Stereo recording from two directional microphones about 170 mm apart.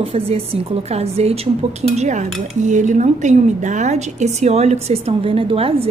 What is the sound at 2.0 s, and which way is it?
Dishes, 45° right (ahead or behind).